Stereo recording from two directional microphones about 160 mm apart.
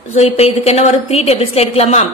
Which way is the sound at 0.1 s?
40° left (ahead or behind).